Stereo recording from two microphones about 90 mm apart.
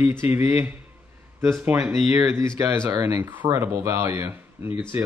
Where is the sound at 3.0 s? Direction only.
25° right (ahead or behind).